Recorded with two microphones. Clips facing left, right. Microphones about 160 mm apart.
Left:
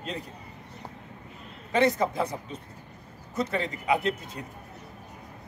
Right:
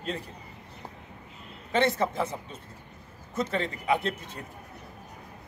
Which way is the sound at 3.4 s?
15° left (ahead or behind).